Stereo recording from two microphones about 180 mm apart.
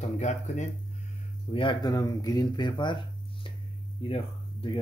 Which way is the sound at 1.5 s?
30° left (ahead or behind).